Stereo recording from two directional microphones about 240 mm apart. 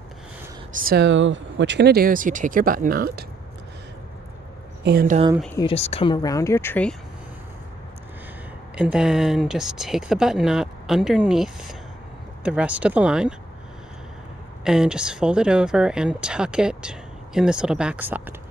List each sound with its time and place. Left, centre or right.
0.7 s speech: right
4.8 s speech: right
5.6 s speech: left; by 7.0 s centre
8.7 s speech: centre
14.6 s speech: centre